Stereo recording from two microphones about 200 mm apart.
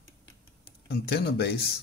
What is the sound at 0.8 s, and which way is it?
Speech, 50° left (ahead or behind).